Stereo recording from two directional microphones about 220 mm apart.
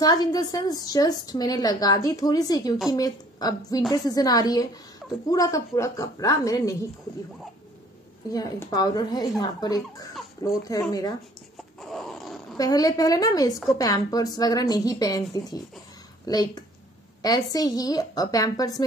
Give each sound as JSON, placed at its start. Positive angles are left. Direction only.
{"t": 0.0, "sound": "a woman's voice", "side_deg": 15}
{"t": 8.3, "sound": "a woman's voice", "side_deg": 15}
{"t": 11.8, "sound": "a sound", "side_deg": 0}
{"t": 12.5, "sound": "a woman's voice", "side_deg": 15}